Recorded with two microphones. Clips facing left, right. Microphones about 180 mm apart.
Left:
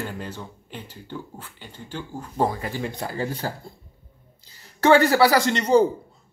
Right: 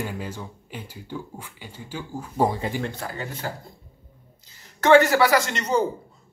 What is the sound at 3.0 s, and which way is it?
Speech, 30° left (ahead or behind).